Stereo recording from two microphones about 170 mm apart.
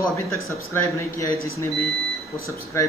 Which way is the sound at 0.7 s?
20° left (ahead or behind).